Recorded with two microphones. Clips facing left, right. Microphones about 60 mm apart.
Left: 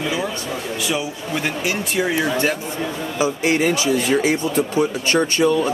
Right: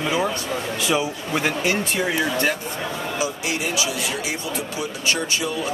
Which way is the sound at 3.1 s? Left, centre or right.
Left.